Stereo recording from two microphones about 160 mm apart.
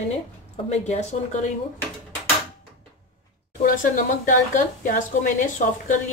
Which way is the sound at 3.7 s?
55° left (ahead or behind).